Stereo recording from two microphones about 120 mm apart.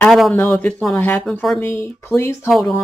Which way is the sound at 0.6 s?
10° left (ahead or behind).